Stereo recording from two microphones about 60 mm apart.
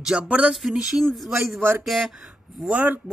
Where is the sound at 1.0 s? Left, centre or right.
Centre.